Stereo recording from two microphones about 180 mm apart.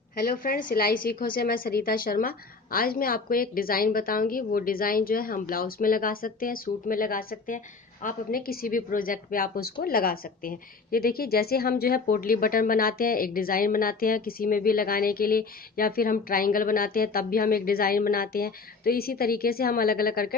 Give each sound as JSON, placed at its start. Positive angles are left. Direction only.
{"t": 0.2, "sound": "a woman's voice", "side_deg": 55}